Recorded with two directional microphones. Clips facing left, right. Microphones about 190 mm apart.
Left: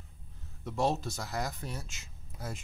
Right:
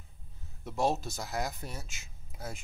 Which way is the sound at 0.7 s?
5° right (ahead or behind).